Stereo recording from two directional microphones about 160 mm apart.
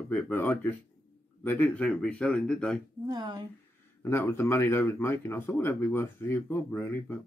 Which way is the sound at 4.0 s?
15° left (ahead or behind).